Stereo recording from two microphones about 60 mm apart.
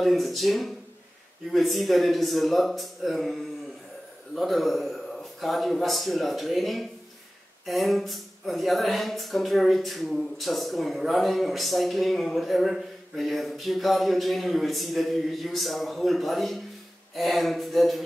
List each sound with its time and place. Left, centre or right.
0.0 s speech: centre
4.4 s speech: centre